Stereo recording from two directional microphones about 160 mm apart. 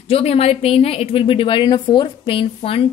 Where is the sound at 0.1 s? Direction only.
40° left (ahead or behind).